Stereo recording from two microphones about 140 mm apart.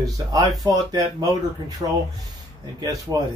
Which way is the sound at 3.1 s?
30° right (ahead or behind).